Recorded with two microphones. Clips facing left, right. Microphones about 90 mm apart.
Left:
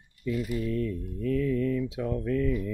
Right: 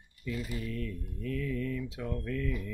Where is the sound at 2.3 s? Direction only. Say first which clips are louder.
Left 9 dB; 25° left (ahead or behind).